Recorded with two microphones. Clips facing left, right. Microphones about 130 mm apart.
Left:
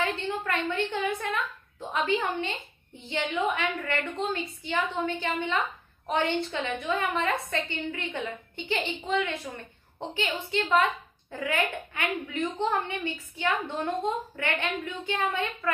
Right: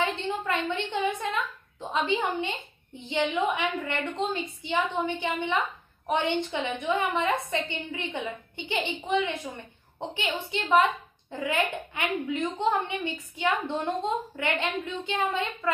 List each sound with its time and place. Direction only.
0.0 s a woman's voice: 20° right (ahead or behind)